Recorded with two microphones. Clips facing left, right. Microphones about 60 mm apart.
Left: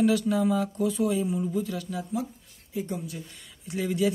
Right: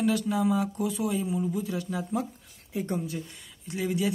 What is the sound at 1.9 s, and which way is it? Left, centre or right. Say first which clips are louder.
Speech: right 1 dB; right.